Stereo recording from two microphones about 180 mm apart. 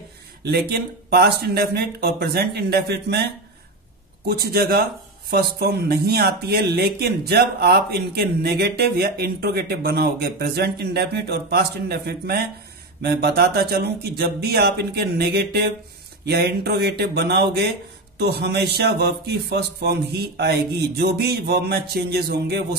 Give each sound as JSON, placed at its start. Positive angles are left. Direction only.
{"t": 0.4, "sound": "speech", "side_deg": -65}
{"t": 4.3, "sound": "speech", "side_deg": -60}